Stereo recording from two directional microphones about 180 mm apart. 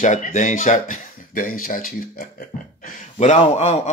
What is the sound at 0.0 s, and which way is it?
A man's voice, 45° left (ahead or behind).